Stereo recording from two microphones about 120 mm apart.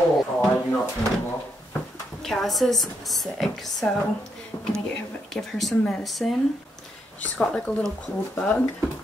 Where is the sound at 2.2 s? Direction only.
Centre (ahead or behind).